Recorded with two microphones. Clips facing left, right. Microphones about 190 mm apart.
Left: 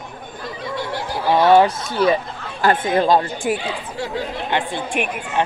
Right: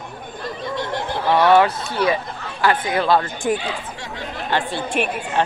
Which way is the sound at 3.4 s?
15° left (ahead or behind).